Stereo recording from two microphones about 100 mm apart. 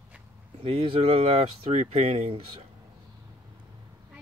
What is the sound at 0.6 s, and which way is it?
Speech, 75° right (ahead or behind).